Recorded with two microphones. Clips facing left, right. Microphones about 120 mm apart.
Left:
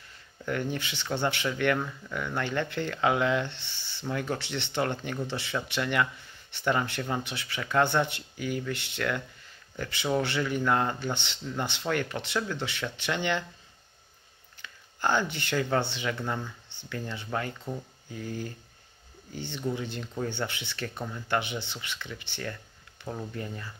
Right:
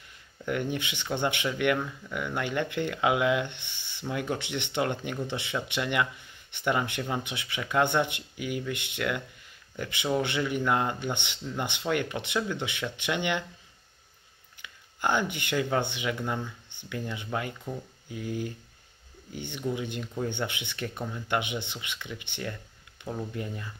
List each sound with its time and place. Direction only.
0.5 s speech: 15° right (ahead or behind)
14.6 s speech: 15° right (ahead or behind)
23.0 s a sound: 20° right (ahead or behind)
23.3 s speech: 15° right (ahead or behind)